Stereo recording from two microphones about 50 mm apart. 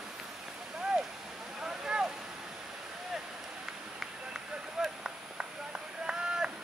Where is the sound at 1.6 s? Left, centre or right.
Centre.